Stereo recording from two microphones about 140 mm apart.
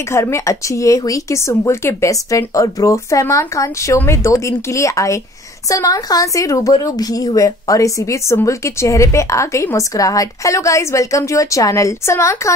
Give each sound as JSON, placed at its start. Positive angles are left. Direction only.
{"t": 0.1, "sound": "a woman's voice", "side_deg": 20}